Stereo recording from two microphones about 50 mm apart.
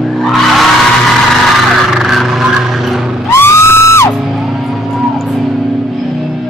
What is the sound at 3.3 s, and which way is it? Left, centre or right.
Music, left.